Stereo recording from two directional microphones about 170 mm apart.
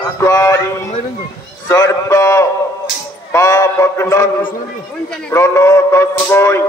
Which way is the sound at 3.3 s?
20° left (ahead or behind).